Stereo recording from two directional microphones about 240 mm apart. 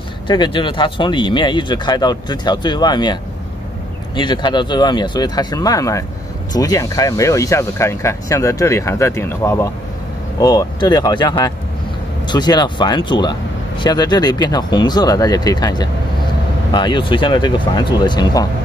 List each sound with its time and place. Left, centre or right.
0.3 s speech: centre